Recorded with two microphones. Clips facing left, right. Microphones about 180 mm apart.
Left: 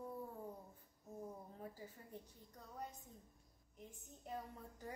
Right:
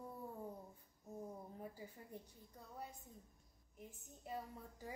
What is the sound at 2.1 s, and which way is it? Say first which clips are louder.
A woman's voice: even; 10° right (ahead or behind).